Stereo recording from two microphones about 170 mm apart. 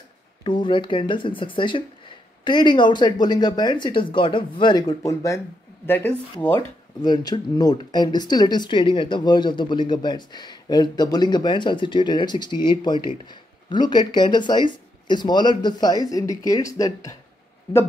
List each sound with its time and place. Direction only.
0.4 s speech: 30° left (ahead or behind); by 6.1 s 10° left (ahead or behind)
7.0 s speech: 25° left (ahead or behind)